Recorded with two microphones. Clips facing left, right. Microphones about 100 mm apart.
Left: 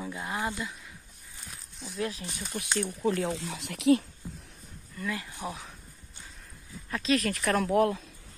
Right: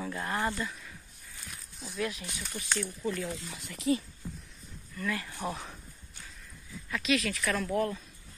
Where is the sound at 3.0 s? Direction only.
75° left (ahead or behind).